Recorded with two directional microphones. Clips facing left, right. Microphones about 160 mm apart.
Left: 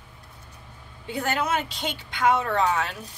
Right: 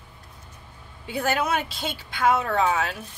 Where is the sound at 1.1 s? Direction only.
10° right (ahead or behind).